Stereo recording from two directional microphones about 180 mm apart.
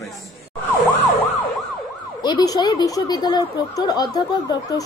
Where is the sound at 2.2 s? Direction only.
25° left (ahead or behind).